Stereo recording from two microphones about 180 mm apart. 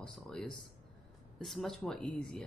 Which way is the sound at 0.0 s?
5° left (ahead or behind).